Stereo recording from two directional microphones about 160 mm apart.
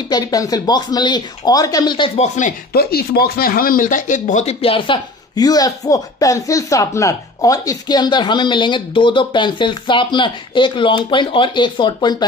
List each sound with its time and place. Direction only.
0.1 s speech: 25° left (ahead or behind)
2.1 s speech: 50° left (ahead or behind)
2.7 s speech: 75° left (ahead or behind); by 12.3 s 25° left (ahead or behind)